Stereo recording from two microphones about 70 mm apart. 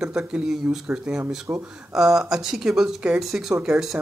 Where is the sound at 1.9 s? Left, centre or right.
Centre.